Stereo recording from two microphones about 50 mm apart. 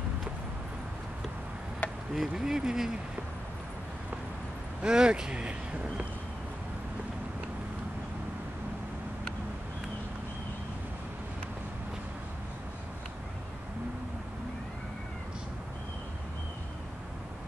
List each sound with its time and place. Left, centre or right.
1.8 s chop: left
2.1 s speech: centre
4.8 s speech: centre